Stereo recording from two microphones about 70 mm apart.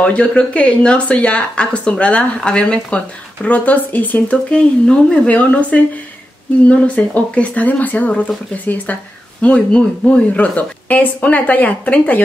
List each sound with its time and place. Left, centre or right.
0.0 s speech: centre
4.5 s speech: centre
9.4 s speech: centre